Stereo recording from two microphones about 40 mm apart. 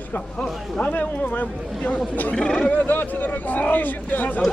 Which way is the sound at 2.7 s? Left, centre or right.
Left.